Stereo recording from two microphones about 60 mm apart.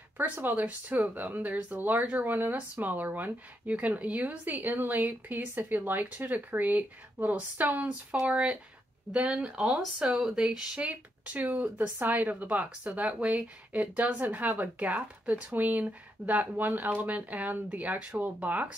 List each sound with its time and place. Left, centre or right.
0.2 s speech: right
10.9 s speech: right